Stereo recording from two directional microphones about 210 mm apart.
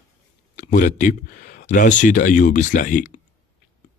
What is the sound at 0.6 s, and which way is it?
Speech, 35° left (ahead or behind).